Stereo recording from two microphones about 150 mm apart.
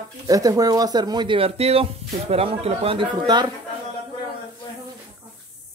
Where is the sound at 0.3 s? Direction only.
25° right (ahead or behind).